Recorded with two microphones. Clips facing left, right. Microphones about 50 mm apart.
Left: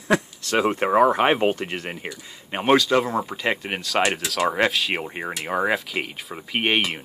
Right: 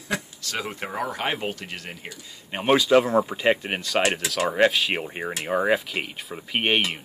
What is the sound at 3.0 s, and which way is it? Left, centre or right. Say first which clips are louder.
Speech: right 3 dB; right.